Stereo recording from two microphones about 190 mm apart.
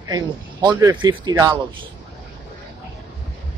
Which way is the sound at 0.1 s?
20° right (ahead or behind).